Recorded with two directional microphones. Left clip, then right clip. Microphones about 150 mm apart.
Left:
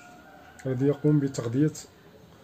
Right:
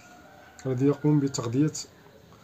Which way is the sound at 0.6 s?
30° right (ahead or behind).